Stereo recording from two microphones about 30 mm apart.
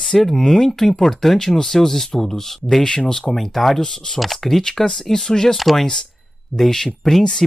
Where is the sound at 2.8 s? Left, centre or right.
Left.